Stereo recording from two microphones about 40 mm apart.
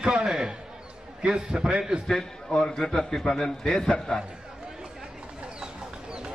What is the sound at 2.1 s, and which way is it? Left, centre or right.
A man's voice, centre.